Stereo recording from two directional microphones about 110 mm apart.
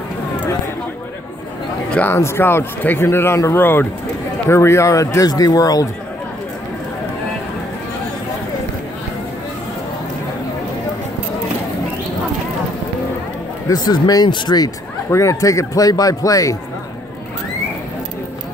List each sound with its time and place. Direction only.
1.9 s a man's voice: 15° left (ahead or behind); by 5.9 s 35° left (ahead or behind)
13.7 s a man's voice: 35° left (ahead or behind)
15.0 s a man's voice: 25° left (ahead or behind)